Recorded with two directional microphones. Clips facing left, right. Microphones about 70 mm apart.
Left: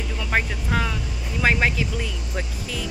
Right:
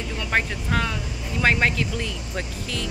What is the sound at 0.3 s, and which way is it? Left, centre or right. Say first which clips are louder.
Speech: even; centre.